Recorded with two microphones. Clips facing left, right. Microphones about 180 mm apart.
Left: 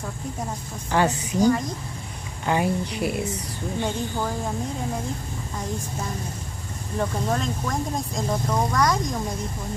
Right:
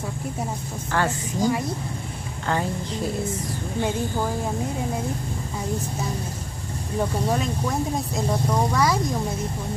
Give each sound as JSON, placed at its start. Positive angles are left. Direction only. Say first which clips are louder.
{"t": 0.9, "sound": "speech", "louder": "left 3 dB", "side_deg": 20}
{"t": 7.0, "sound": "speech", "louder": "right 1 dB", "side_deg": -10}